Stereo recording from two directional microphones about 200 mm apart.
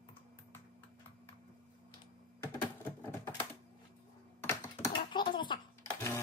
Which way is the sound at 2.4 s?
10° left (ahead or behind).